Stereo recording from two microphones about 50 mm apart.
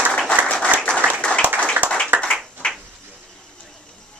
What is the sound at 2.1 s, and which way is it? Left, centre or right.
Clapping, right.